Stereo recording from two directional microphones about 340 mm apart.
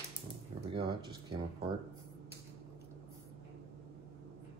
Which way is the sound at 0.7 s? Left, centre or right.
Centre.